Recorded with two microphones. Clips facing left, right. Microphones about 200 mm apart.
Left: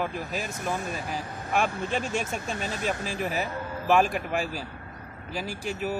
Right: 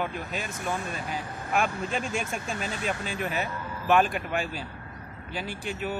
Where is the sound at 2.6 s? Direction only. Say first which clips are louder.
Left 1 dB; 40° left (ahead or behind).